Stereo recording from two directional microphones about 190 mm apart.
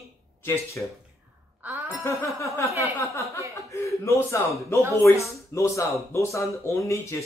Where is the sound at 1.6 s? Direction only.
15° right (ahead or behind).